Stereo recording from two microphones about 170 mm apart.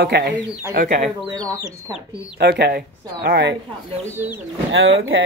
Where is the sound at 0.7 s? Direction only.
55° right (ahead or behind).